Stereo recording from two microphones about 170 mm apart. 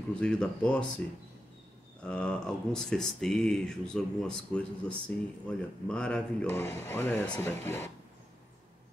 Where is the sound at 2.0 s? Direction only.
5° left (ahead or behind).